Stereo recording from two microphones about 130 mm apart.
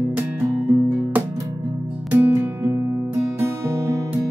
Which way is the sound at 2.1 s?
15° right (ahead or behind).